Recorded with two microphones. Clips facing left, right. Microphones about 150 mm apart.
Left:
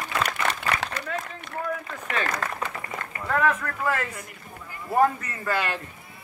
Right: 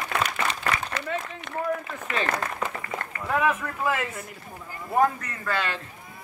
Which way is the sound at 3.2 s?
5° right (ahead or behind).